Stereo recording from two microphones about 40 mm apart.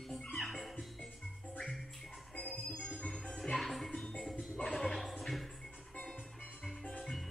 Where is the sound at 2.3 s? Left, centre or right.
Left.